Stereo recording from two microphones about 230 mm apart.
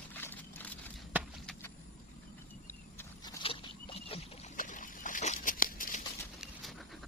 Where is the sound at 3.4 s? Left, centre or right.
Left.